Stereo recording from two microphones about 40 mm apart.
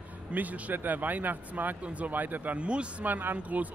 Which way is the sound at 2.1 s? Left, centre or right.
Right.